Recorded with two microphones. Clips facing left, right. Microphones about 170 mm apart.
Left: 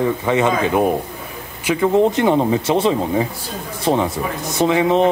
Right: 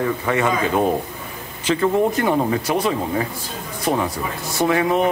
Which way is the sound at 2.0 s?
20° left (ahead or behind).